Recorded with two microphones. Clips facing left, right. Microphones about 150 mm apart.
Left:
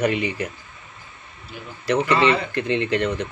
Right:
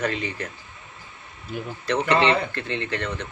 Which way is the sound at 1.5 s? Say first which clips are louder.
Right 7 dB; 50° right (ahead or behind).